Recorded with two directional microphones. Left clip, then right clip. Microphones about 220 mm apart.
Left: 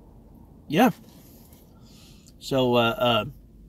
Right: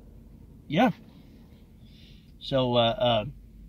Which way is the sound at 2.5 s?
15° left (ahead or behind).